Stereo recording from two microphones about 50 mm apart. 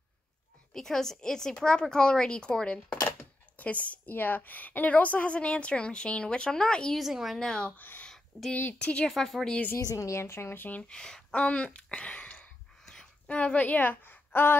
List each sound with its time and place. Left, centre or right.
0.7 s speech: centre
3.5 s a woman's voice: left
4.1 s a woman's voice: left; by 7.0 s centre
7.0 s a woman's voice: centre
7.3 s speech: centre
7.7 s speech: left
8.1 s a sound: centre
8.7 s a woman's voice: centre
9.1 s a woman's voice: centre
9.8 s a woman's voice: left
10.5 s speech: left
10.8 s speech: centre
12.8 s a sound: centre
13.3 s a woman's voice: left